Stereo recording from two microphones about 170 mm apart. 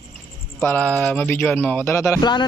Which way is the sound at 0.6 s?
10° left (ahead or behind).